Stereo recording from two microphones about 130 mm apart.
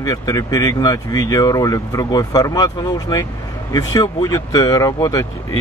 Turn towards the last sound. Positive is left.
turn(degrees=25)  # may be behind; listen again after turning